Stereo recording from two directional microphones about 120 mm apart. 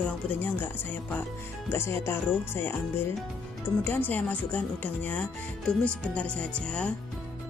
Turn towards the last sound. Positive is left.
turn(degrees=10)  # may be behind; listen again after turning